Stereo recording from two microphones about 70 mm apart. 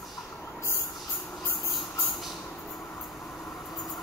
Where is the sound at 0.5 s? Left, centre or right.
Left.